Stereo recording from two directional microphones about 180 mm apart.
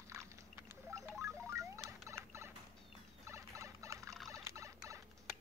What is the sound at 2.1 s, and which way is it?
Rodents, 15° right (ahead or behind).